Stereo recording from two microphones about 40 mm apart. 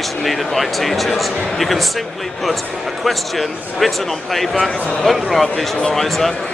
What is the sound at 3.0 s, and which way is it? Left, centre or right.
A man's voice, centre.